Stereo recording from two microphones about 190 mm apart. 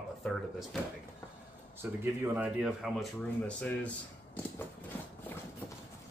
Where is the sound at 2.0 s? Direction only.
10° right (ahead or behind); by 4.4 s 5° left (ahead or behind).